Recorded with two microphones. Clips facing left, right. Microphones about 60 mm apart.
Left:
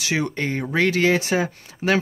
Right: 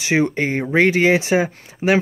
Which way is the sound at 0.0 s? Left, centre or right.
Right.